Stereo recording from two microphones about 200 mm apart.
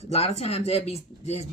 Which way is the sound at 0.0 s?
30° left (ahead or behind).